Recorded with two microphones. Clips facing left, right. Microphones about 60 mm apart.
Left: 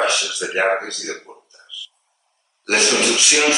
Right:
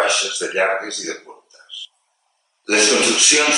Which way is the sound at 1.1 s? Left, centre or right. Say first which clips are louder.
Even; centre.